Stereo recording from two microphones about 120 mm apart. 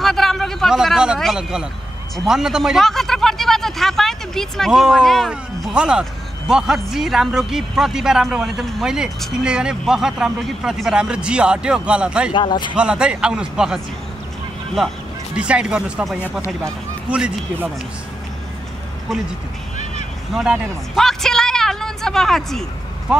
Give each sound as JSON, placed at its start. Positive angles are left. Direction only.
{"t": 0.0, "sound": "a man's voice", "side_deg": 0}
{"t": 12.3, "sound": "speech", "side_deg": 40}
{"t": 12.7, "sound": "a man's voice", "side_deg": -10}
{"t": 15.3, "sound": "a man's voice", "side_deg": -10}
{"t": 20.3, "sound": "a man's voice", "side_deg": -5}